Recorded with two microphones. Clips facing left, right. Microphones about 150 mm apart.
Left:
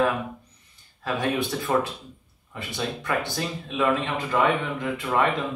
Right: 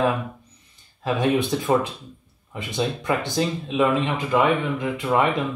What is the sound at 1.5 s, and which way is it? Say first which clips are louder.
Speech: right 3 dB; 20° right (ahead or behind).